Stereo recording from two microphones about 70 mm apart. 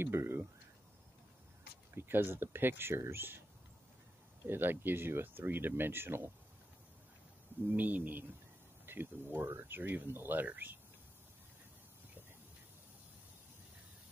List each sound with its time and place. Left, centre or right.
0.0 s speech: right
2.0 s speech: right
4.5 s speech: right
7.7 s speech: right